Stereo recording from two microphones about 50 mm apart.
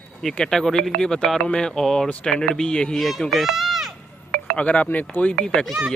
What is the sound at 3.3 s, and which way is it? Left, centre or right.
Speech, centre.